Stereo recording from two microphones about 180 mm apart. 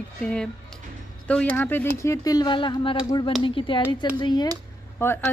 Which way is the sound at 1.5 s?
10° left (ahead or behind).